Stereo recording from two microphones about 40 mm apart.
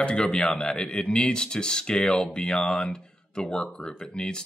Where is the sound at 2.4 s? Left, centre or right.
Centre.